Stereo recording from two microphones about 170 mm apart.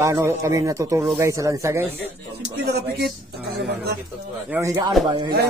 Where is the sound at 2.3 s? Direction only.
75° right (ahead or behind).